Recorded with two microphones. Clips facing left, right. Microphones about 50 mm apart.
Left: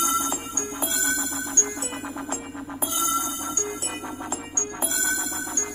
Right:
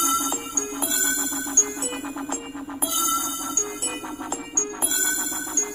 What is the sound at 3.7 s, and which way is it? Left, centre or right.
Music, right.